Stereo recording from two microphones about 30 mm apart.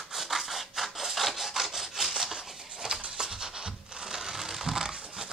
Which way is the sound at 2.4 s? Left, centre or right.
Centre.